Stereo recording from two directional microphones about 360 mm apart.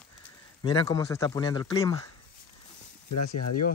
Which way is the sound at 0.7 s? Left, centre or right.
Centre.